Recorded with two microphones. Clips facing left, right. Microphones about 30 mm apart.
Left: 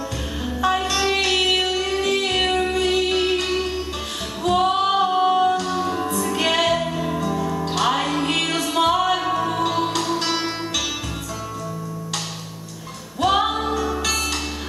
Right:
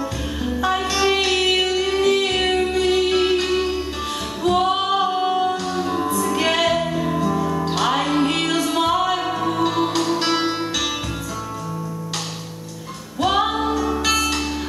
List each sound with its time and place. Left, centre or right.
0.5 s music: centre
4.4 s music: centre
10.1 s music: centre
13.2 s music: centre